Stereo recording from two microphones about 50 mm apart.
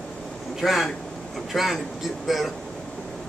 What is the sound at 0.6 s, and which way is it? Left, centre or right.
A man's voice, centre.